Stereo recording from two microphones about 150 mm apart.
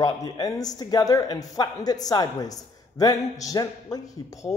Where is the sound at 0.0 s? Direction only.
25° left (ahead or behind).